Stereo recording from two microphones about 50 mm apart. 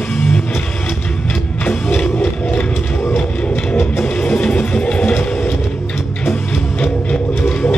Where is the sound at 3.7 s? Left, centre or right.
Left.